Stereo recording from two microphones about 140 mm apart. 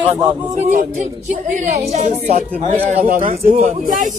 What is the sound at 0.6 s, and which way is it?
A woman's voice, 65° right (ahead or behind).